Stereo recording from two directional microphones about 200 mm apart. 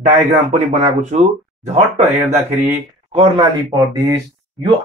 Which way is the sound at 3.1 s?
25° right (ahead or behind).